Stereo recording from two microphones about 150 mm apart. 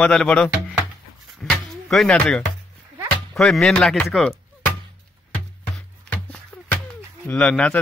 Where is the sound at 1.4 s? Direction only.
Centre (ahead or behind).